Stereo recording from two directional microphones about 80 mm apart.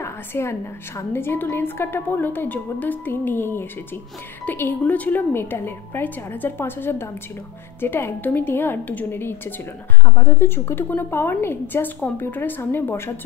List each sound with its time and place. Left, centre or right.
0.0 s a woman's voice: left
10.0 s a woman's voice: left